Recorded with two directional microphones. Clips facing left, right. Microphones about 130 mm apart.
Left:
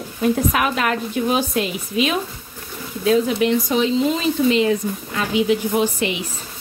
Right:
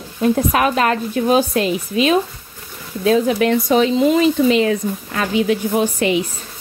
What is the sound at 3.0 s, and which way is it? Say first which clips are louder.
Speech: right 2 dB; 50° right (ahead or behind).